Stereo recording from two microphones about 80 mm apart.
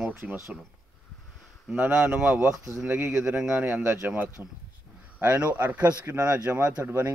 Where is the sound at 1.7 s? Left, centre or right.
Right.